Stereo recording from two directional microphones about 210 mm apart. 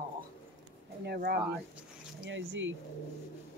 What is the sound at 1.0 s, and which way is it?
Speech, 50° right (ahead or behind).